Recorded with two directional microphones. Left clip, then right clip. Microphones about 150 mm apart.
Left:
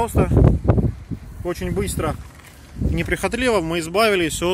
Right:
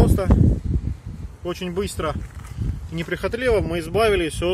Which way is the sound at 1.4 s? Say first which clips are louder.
Left 1 dB; 90° left.